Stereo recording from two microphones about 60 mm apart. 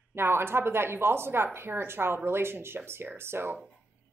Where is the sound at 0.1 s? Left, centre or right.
Right.